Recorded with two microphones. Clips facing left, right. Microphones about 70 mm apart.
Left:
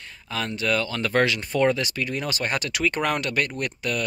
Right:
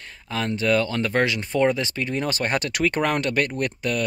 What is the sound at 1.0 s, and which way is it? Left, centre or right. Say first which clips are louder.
Speech: even; right.